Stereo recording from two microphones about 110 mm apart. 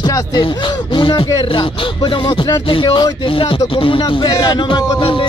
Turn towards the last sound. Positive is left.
turn(degrees=50)  # may be behind; listen again after turning